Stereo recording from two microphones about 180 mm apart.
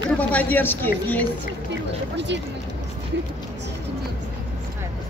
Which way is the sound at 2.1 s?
75° right (ahead or behind).